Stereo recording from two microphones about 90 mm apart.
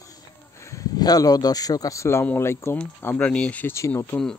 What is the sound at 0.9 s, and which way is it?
Speech, 45° left (ahead or behind).